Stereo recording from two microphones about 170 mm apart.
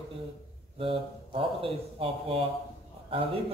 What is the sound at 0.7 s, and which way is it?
A man's voice, 35° right (ahead or behind).